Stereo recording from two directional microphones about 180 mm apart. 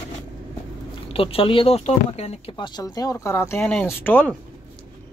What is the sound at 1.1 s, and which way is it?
Speech, 30° left (ahead or behind).